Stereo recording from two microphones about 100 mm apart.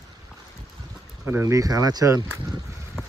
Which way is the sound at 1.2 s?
25° right (ahead or behind).